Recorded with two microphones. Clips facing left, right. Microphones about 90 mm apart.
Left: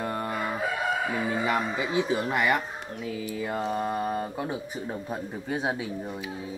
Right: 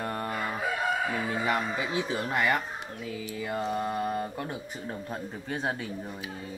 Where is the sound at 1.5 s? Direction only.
Centre (ahead or behind).